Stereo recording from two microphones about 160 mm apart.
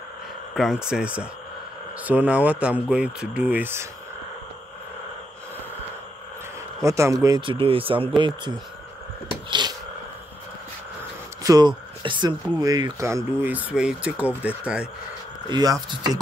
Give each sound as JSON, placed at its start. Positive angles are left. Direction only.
{"t": 0.6, "sound": "speech", "side_deg": 0}
{"t": 6.8, "sound": "speech", "side_deg": -20}
{"t": 9.5, "sound": "a sound", "side_deg": -25}
{"t": 11.4, "sound": "speech", "side_deg": -25}
{"t": 15.5, "sound": "speech", "side_deg": -25}